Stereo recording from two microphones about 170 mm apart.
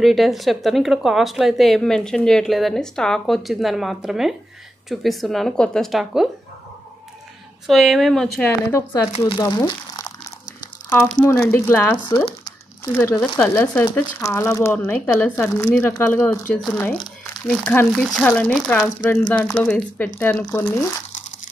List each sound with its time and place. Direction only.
0.0 s speech: centre (ahead or behind)
7.6 s speech: centre (ahead or behind); by 10.1 s 20° left (ahead or behind)
10.9 s speech: 10° left (ahead or behind)
12.3 s a sound: 25° left (ahead or behind)
12.9 s speech: 10° left (ahead or behind)
16.7 s speech: 20° left (ahead or behind)
17.5 s speech: 5° left (ahead or behind)